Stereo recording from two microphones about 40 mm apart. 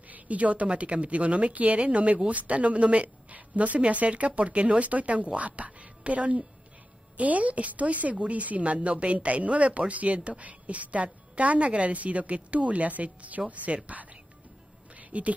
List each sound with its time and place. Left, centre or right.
0.1 s a woman's voice: right
13.7 s speech: right
15.0 s a sound: right